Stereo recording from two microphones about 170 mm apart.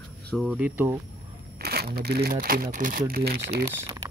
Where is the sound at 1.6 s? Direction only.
65° right (ahead or behind).